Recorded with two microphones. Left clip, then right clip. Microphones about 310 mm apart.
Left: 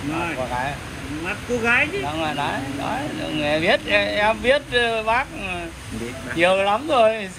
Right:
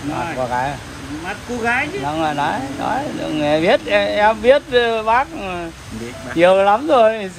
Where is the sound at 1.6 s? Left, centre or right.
Centre.